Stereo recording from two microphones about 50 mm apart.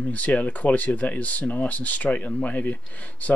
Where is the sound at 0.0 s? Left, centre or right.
Left.